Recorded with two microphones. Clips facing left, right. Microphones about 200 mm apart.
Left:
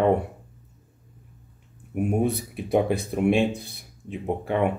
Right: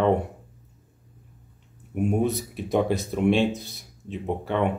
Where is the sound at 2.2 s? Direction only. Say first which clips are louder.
Even; 55° left (ahead or behind).